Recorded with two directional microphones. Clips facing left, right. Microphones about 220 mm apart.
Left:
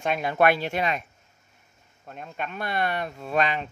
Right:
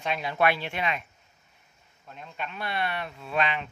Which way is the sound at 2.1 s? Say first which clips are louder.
Left 4 dB; 50° left (ahead or behind).